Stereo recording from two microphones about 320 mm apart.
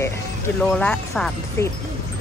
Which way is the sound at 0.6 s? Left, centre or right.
Centre.